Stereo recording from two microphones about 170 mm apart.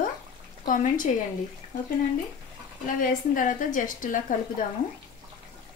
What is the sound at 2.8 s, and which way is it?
A woman's voice, 50° left (ahead or behind).